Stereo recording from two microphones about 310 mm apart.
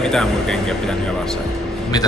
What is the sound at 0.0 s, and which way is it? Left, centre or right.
Speech, centre.